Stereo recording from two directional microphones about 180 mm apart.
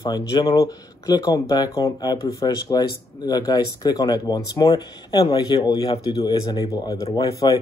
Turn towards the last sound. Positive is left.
turn(degrees=20)  # may be behind; listen again after turning